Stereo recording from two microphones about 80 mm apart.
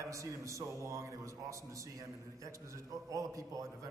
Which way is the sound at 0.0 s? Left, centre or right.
Right.